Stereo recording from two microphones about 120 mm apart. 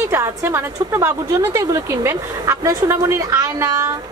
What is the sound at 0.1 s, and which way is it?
A woman's voice, 20° right (ahead or behind).